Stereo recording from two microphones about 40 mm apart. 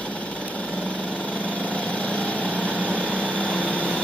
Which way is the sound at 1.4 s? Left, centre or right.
Left.